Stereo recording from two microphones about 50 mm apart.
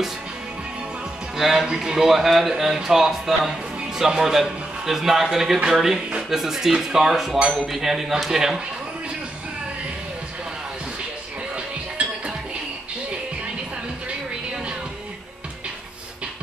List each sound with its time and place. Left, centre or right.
1.3 s a man's voice: centre
11.5 s music: right